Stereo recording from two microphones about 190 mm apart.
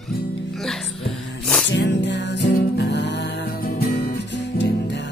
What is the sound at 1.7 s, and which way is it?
Music, 65° left (ahead or behind).